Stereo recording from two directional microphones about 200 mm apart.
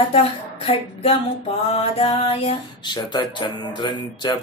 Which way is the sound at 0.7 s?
30° left (ahead or behind).